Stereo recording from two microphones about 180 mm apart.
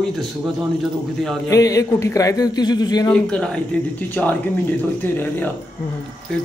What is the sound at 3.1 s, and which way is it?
Speech, 5° left (ahead or behind).